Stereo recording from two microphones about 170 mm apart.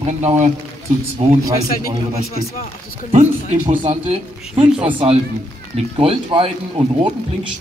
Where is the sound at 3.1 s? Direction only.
45° right (ahead or behind).